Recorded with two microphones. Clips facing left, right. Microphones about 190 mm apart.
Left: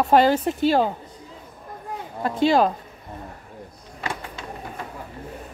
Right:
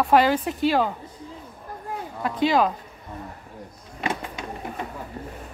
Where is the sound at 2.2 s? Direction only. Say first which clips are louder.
Left 2 dB; 30° left (ahead or behind).